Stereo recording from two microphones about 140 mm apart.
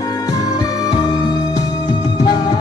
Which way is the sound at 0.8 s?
30° left (ahead or behind).